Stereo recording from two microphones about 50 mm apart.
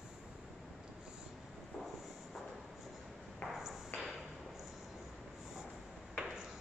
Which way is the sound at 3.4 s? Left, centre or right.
Centre.